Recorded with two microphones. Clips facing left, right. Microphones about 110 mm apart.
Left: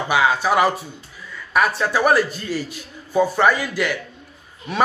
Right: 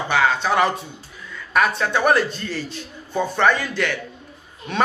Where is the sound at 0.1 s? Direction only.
10° left (ahead or behind).